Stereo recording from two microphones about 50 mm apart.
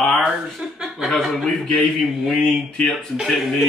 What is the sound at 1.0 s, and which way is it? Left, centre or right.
Speech, centre.